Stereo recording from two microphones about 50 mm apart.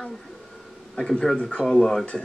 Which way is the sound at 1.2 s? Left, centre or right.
Centre.